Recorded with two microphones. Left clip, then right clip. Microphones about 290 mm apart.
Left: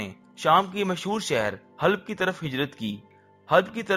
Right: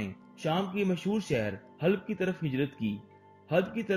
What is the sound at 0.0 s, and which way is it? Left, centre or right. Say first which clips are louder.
Music: left 9 dB; left.